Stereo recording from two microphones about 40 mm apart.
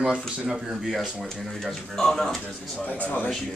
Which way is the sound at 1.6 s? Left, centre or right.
Centre.